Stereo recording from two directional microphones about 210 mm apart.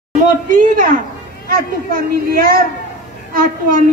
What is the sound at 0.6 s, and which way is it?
A woman's voice, 40° right (ahead or behind).